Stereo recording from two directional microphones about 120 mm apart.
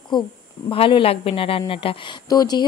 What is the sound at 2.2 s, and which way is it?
Speech, 35° left (ahead or behind).